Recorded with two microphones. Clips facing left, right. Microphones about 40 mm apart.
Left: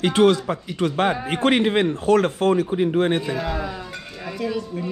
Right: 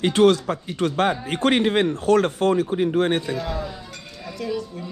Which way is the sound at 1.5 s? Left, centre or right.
Left.